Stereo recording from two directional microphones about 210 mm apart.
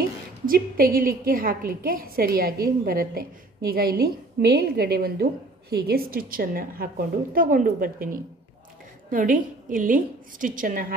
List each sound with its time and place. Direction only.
0.5 s a woman's voice: 45° right (ahead or behind)